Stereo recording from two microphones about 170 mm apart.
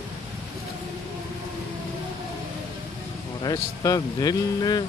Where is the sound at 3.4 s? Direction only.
20° left (ahead or behind).